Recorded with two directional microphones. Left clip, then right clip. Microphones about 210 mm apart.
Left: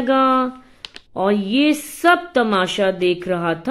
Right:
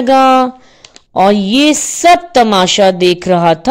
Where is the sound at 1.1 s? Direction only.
45° right (ahead or behind).